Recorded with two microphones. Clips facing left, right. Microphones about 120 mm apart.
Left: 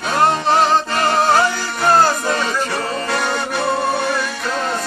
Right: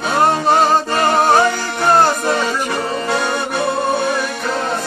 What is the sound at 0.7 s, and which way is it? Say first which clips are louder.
Music: right 2 dB; 15° right (ahead or behind).